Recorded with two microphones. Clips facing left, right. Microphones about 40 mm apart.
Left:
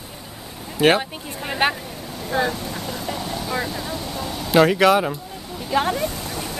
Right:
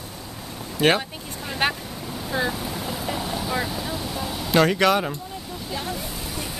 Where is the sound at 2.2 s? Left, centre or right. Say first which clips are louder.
Left 4 dB; centre.